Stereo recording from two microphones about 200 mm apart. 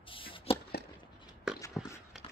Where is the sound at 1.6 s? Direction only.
15° left (ahead or behind).